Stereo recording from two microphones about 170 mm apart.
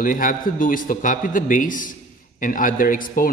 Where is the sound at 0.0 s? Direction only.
55° left (ahead or behind).